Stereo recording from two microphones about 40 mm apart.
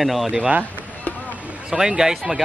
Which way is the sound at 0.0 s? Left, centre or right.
Centre.